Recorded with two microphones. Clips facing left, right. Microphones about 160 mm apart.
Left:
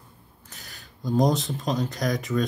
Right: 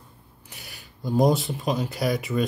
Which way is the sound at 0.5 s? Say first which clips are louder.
Right 1 dB; 10° right (ahead or behind).